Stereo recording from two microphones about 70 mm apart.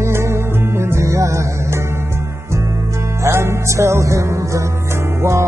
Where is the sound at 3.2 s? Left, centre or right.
Right.